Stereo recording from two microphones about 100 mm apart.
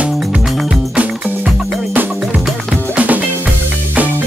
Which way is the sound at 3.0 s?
15° right (ahead or behind).